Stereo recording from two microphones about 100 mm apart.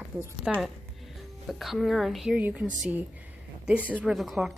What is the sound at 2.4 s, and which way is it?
Speech, 15° right (ahead or behind).